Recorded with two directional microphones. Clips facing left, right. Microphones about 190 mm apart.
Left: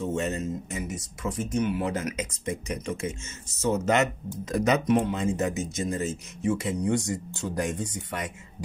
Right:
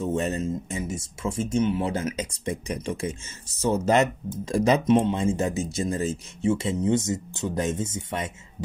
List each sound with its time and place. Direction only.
0.1 s speech: 35° right (ahead or behind)